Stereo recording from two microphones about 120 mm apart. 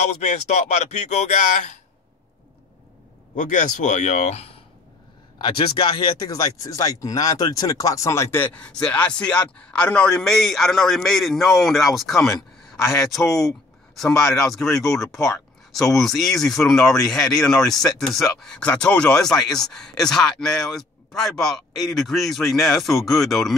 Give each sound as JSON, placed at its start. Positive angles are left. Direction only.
{"t": 0.2, "sound": "speech", "side_deg": 75}
{"t": 3.3, "sound": "speech", "side_deg": 90}
{"t": 5.8, "sound": "speech", "side_deg": 35}